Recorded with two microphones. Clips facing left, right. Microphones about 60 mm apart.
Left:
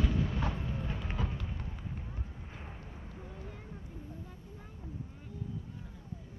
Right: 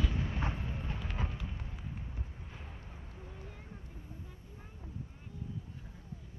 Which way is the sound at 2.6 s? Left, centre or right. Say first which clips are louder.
Left 3 dB; left.